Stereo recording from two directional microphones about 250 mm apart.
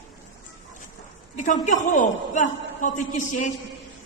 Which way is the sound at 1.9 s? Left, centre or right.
Left.